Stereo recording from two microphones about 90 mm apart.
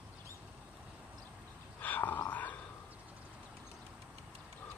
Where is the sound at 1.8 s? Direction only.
20° left (ahead or behind).